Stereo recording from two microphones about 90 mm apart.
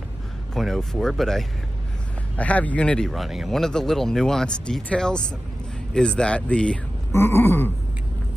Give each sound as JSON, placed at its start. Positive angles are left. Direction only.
{"t": 0.6, "sound": "speech", "side_deg": 0}
{"t": 2.3, "sound": "speech", "side_deg": 15}
{"t": 3.1, "sound": "speech", "side_deg": 0}
{"t": 7.1, "sound": "wail", "side_deg": 30}